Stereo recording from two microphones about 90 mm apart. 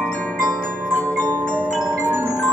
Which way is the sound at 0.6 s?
15° right (ahead or behind).